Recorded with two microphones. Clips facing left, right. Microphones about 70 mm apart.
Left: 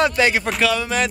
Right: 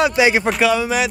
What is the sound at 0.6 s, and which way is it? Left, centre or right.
Speech, centre.